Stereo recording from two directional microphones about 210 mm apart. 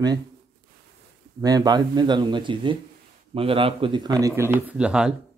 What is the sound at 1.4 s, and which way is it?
A man's voice, 20° right (ahead or behind).